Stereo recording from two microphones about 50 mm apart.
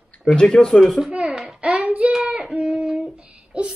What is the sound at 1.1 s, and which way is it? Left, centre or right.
Speech, right.